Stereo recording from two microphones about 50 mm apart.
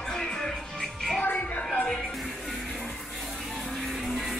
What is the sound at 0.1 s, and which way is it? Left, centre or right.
Music, centre.